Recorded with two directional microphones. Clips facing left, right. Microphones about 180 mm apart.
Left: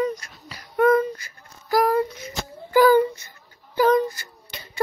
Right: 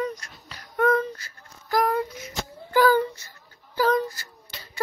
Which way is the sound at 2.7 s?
15° left (ahead or behind).